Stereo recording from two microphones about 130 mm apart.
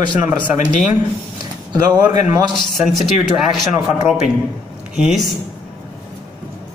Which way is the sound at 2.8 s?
5° right (ahead or behind).